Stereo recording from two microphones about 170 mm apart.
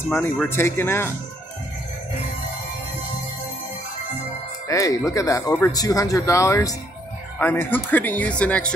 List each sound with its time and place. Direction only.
0.1 s speech: 10° left (ahead or behind)
4.6 s speech: 20° left (ahead or behind)